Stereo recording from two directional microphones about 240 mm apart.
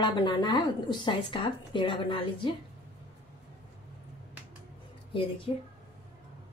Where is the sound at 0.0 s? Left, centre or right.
Centre.